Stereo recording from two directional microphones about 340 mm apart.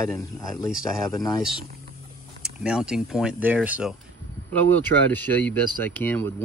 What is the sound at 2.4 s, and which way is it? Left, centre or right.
Speech, centre.